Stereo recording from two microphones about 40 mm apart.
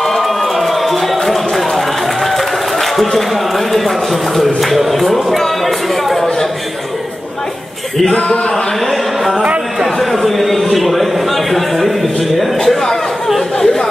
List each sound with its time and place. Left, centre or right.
0.0 s run: centre
2.2 s a man's voice: centre
8.1 s speech: left
9.8 s a man's voice: centre
12.5 s a man's voice: centre